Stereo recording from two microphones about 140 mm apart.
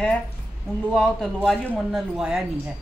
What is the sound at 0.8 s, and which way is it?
A man's voice, 5° left (ahead or behind).